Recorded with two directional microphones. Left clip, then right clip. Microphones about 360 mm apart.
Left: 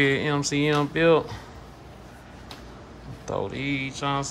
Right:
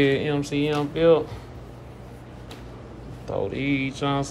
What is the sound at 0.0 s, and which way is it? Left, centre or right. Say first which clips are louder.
Speech: right 1 dB; centre.